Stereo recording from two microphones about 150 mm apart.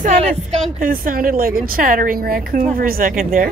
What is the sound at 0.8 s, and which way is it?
A woman's voice, 70° right (ahead or behind).